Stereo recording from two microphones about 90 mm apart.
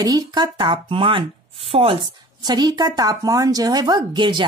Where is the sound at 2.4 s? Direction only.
50° right (ahead or behind).